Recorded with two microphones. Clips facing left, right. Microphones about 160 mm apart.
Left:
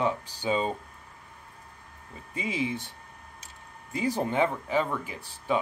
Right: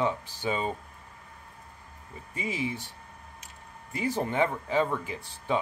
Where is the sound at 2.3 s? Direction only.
20° left (ahead or behind).